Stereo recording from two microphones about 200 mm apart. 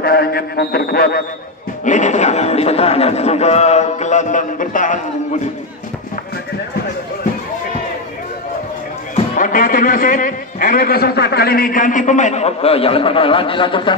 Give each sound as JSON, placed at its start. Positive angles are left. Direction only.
{"t": 0.0, "sound": "mantra", "side_deg": 50}
{"t": 1.9, "sound": "a man's voice", "side_deg": 35}
{"t": 9.1, "sound": "a man's voice", "side_deg": 45}